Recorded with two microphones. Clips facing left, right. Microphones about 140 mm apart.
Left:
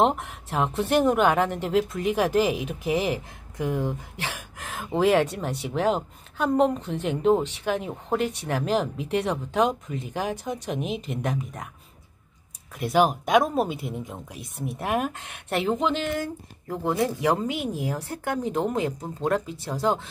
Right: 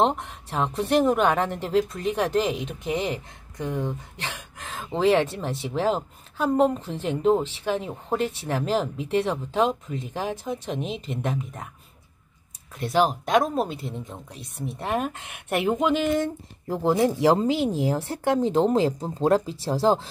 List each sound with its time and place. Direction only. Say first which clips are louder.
0.0 s speech: even; centre (ahead or behind)
12.7 s speech: left 1 dB; 5° left (ahead or behind); by 16.0 s 10° right (ahead or behind)
16.2 s a woman's voice: right 4 dB; 30° right (ahead or behind)